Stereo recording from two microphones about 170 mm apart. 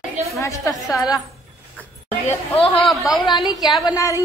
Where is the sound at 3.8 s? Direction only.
20° left (ahead or behind).